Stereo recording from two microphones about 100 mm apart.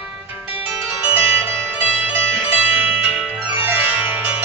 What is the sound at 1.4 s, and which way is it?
Music, 15° right (ahead or behind).